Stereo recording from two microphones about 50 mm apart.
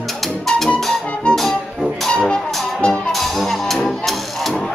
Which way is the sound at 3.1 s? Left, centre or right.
Centre.